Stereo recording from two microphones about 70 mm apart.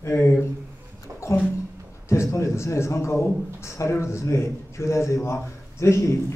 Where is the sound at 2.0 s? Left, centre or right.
Left.